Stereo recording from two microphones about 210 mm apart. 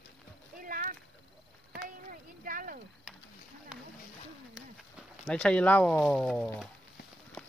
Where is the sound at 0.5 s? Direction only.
40° right (ahead or behind).